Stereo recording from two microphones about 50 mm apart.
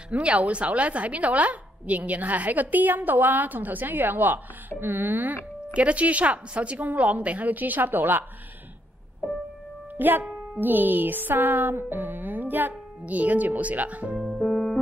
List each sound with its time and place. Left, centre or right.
0.1 s a woman's voice: right
5.7 s a woman's voice: right
9.9 s a woman's voice: right
14.4 s music: centre